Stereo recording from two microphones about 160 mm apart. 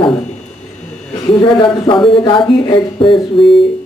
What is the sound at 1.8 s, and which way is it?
Speech, 30° left (ahead or behind).